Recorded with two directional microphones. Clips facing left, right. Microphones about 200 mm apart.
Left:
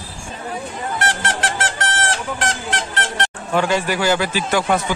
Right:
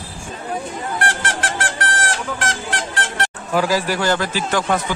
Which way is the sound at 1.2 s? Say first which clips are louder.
Left 1 dB; 25° left (ahead or behind).